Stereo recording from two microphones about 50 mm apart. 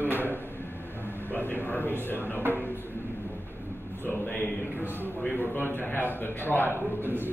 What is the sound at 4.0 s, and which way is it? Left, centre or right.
A man's voice, left.